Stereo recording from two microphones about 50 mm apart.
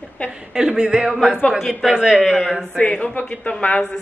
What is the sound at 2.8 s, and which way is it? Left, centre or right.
Speech, left.